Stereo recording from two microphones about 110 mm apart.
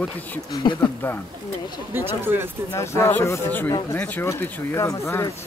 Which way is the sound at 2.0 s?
20° right (ahead or behind).